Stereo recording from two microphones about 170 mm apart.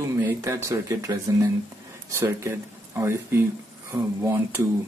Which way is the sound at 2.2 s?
15° right (ahead or behind).